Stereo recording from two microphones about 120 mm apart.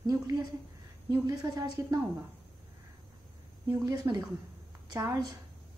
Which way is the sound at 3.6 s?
30° right (ahead or behind).